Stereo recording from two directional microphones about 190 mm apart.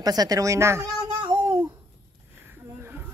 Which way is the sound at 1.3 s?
10° right (ahead or behind).